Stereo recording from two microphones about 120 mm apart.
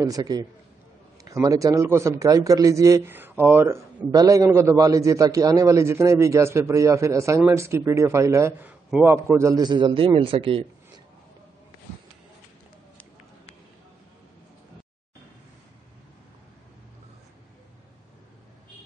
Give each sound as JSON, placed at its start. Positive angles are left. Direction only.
{"t": 0.0, "sound": "a man's voice", "side_deg": -30}
{"t": 4.1, "sound": "a man's voice", "side_deg": -30}
{"t": 9.7, "sound": "a man's voice", "side_deg": -40}